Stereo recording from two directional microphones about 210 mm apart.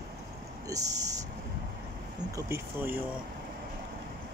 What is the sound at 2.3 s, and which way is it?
Speech, 10° right (ahead or behind).